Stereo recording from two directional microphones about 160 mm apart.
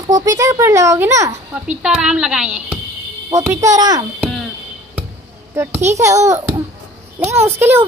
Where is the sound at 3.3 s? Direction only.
15° right (ahead or behind).